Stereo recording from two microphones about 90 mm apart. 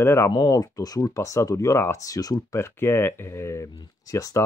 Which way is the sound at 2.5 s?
25° left (ahead or behind).